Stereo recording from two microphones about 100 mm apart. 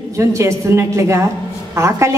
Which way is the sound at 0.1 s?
30° right (ahead or behind).